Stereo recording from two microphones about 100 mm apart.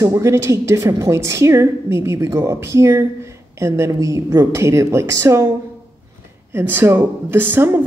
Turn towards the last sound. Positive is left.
turn(degrees=-20)  # may be behind; listen again after turning